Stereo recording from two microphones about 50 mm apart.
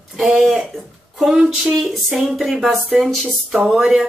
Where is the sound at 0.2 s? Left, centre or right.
Centre.